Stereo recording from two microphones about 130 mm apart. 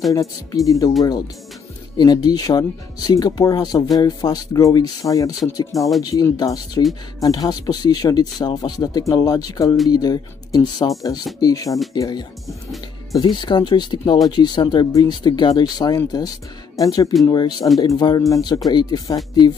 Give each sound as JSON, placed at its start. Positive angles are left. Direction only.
{"t": 0.1, "sound": "speech", "side_deg": 25}
{"t": 5.8, "sound": "speech", "side_deg": 0}
{"t": 6.3, "sound": "speech", "side_deg": 30}
{"t": 13.4, "sound": "speech", "side_deg": 35}